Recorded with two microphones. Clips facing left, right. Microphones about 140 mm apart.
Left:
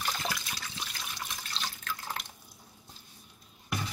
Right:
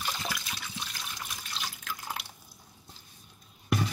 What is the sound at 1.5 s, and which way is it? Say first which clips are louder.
Water tap: even; 5° right (ahead or behind).